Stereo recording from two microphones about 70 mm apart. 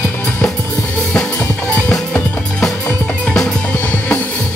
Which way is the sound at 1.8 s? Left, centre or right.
Centre.